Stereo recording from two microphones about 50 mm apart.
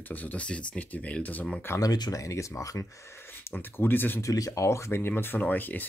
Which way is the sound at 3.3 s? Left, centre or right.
Left.